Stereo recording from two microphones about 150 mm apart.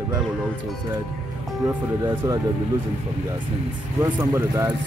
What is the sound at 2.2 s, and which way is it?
Speech, 20° right (ahead or behind).